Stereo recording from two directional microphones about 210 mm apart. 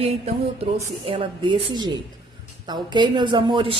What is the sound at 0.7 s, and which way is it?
A woman's voice, 25° right (ahead or behind).